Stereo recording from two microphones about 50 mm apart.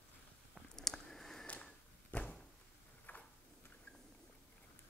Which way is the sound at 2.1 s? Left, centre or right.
Left.